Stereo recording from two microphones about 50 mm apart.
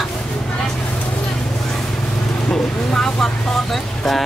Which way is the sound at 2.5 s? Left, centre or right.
Centre.